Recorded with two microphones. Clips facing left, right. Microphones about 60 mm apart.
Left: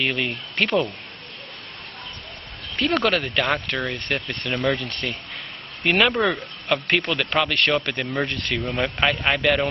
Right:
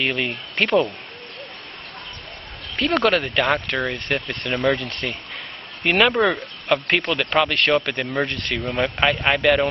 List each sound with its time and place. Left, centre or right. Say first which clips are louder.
0.0 s speech: right 1 dB; centre
2.7 s speech: right 2 dB; centre